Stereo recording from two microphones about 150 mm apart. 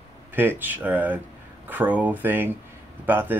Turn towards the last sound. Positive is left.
turn(degrees=-15)  # may be behind; listen again after turning